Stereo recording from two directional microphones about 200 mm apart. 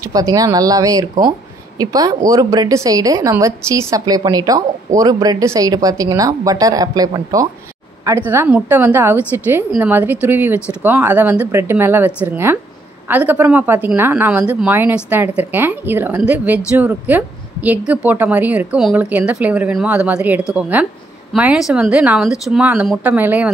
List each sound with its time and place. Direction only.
0.1 s a woman's voice: 15° right (ahead or behind)